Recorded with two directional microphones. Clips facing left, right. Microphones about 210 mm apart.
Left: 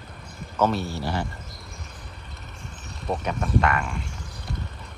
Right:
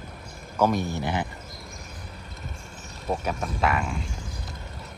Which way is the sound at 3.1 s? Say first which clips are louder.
Left 1 dB; 5° right (ahead or behind).